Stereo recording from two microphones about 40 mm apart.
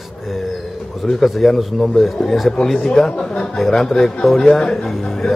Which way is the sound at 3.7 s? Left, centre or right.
Centre.